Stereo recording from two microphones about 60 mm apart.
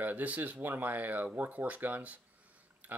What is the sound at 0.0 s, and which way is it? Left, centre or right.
Speech, right.